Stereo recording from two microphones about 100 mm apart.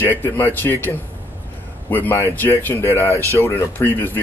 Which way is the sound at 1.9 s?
20° left (ahead or behind).